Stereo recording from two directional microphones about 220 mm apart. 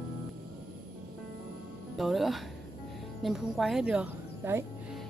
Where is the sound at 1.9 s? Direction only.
Centre (ahead or behind).